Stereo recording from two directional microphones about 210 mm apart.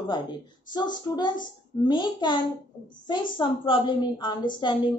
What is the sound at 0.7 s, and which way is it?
A woman's voice, 20° left (ahead or behind).